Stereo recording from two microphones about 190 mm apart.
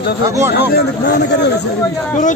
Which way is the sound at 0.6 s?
60° left (ahead or behind).